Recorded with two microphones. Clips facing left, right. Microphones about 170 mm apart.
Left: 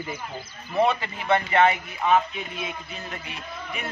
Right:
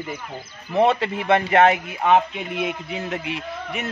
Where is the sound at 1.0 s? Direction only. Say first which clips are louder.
Right 4 dB; 65° right (ahead or behind).